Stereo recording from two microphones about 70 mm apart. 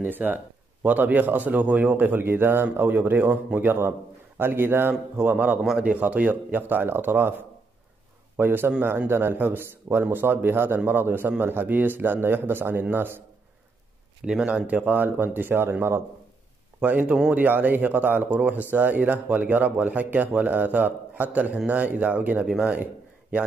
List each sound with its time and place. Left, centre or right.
0.0 s a man's voice: right
14.2 s speech: centre; by 16.0 s right
16.8 s speech: right
22.5 s speech: centre